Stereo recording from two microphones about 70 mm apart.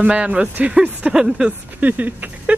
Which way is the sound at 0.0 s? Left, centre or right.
Centre.